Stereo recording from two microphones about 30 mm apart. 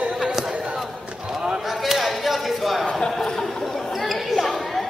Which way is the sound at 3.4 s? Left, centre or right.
Centre.